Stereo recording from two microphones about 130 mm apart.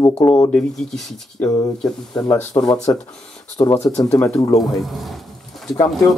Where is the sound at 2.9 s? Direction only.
20° left (ahead or behind).